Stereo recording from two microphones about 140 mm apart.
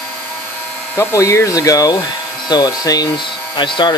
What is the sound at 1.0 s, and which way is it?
Speech, 20° left (ahead or behind).